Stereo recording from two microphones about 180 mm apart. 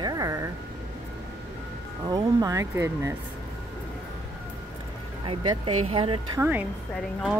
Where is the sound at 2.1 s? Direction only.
20° right (ahead or behind).